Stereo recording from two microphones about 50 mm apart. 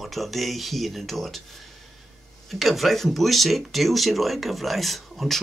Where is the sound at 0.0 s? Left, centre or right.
Centre.